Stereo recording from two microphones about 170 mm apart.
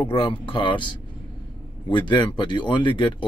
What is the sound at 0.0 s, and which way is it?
Speech, 30° left (ahead or behind).